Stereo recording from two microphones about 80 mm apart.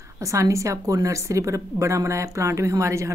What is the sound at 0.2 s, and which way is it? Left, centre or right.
A woman's voice, right.